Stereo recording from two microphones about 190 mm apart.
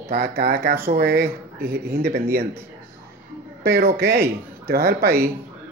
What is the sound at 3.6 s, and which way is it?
Speech, 55° right (ahead or behind).